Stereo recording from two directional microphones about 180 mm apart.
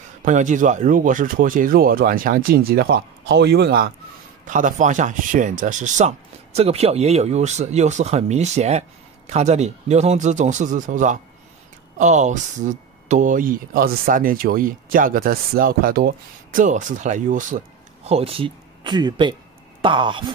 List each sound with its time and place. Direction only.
0.2 s speech: 45° right (ahead or behind); by 3.9 s 60° right (ahead or behind)
4.5 s speech: 45° right (ahead or behind); by 20.2 s 25° right (ahead or behind)